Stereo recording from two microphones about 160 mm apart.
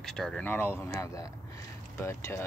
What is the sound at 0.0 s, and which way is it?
Speech, 5° left (ahead or behind).